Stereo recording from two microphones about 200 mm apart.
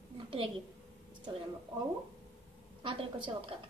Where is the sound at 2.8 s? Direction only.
25° right (ahead or behind).